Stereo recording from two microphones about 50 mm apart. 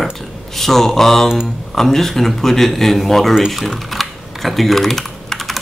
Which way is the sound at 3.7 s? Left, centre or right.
Centre.